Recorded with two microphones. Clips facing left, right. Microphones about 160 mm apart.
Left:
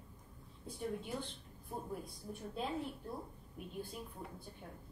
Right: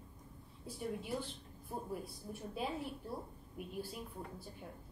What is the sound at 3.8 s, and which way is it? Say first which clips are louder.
Speech: even; 5° right (ahead or behind).